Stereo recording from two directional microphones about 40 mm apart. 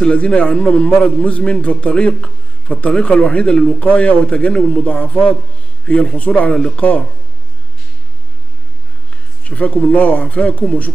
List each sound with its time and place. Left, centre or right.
0.1 s a man's voice: left
9.4 s a man's voice: left